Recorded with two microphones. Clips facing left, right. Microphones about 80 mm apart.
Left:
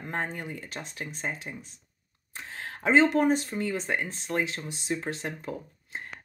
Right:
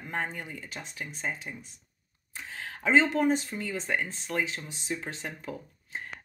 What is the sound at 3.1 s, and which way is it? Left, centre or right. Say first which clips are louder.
Speech: left 2 dB; left.